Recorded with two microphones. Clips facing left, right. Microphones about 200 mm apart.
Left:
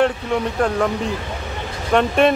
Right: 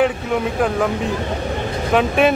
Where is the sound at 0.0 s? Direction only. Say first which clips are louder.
Right 1 dB; 5° right (ahead or behind).